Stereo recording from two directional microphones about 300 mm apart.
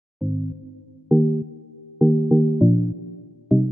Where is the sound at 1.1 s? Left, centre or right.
Centre.